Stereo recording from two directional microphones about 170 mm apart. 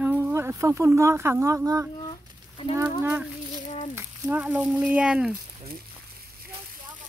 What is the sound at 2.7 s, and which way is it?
Speech, 15° right (ahead or behind).